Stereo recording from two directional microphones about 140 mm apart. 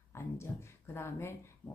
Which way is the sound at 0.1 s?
20° left (ahead or behind).